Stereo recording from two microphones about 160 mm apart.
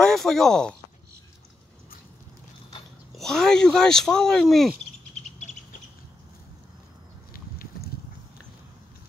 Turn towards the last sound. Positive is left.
turn(degrees=65)  # may be behind; listen again after turning